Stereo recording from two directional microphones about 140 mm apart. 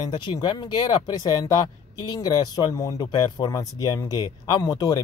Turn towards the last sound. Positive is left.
turn(degrees=25)  # may be behind; listen again after turning